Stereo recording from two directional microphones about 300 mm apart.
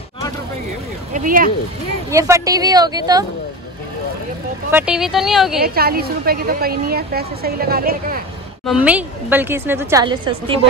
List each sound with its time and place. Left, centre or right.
1.1 s speech: right
2.0 s a woman's voice: centre
4.6 s speech: centre
5.6 s a woman's voice: right
8.6 s a woman's voice: centre